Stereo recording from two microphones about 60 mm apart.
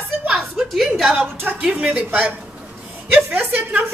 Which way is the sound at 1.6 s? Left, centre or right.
Centre.